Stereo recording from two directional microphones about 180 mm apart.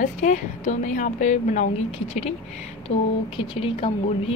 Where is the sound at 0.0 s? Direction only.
45° left (ahead or behind).